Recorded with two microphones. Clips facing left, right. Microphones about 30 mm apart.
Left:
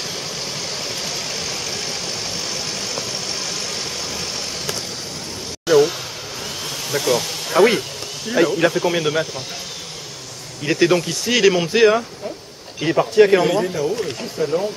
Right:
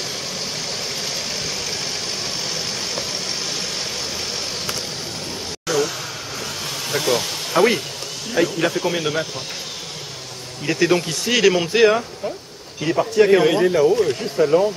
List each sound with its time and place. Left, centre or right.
1.0 s vehicle: centre
5.7 s speech: centre
6.9 s speech: centre
10.6 s speech: centre
12.8 s speech: centre
13.5 s speech: right